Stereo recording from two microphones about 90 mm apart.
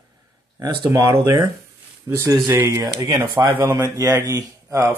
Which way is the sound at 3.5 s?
25° right (ahead or behind).